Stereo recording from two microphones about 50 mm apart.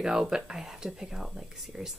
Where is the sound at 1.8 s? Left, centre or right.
Right.